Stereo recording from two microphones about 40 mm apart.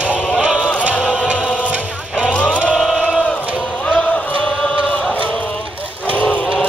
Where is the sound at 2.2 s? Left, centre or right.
Left.